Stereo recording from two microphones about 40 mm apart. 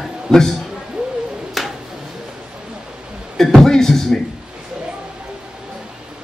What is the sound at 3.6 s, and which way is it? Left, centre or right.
Music, centre.